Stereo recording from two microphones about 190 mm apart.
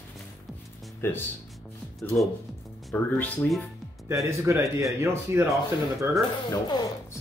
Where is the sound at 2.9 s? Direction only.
10° left (ahead or behind).